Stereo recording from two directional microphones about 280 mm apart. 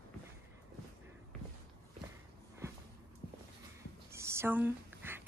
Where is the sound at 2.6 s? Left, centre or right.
Centre.